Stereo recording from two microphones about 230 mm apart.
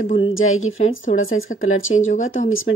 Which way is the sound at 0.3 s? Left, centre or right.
Left.